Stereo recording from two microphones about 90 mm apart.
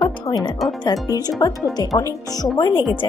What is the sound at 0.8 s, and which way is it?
Speech, 45° left (ahead or behind).